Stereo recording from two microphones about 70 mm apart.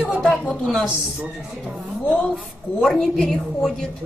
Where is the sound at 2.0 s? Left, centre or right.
Centre.